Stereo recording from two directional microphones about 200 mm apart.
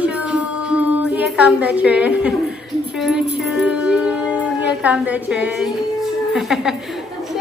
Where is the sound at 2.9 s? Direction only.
Centre (ahead or behind).